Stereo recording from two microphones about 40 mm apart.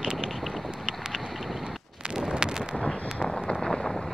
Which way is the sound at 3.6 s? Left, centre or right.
Left.